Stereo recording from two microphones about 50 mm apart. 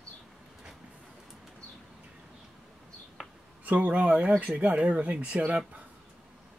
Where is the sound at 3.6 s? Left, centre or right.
Right.